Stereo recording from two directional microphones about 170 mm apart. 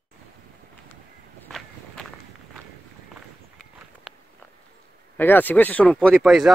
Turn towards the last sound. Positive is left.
turn(degrees=0)  # may be behind; listen again after turning